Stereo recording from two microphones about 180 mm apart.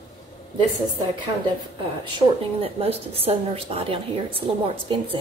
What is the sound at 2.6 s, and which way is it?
A woman's voice, 35° right (ahead or behind).